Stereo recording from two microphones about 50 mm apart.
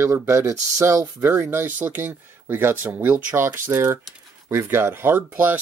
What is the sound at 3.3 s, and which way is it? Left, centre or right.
Speech, right.